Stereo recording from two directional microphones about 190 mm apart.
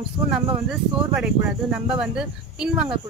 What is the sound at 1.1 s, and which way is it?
A woman's voice, 5° right (ahead or behind).